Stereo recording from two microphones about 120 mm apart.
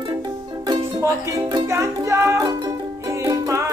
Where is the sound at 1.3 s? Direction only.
25° right (ahead or behind).